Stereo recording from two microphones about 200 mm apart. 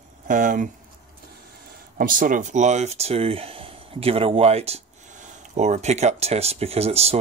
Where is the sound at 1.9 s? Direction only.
45° right (ahead or behind).